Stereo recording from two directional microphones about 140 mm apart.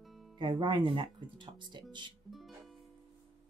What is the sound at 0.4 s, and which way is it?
Speech, 35° right (ahead or behind).